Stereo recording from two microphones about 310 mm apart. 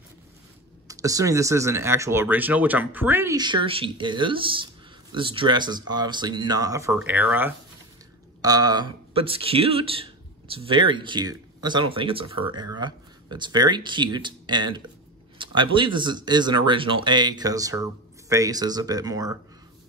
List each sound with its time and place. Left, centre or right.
0.8 s speech: centre